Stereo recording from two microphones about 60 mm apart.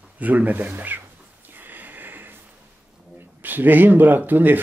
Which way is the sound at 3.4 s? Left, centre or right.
Right.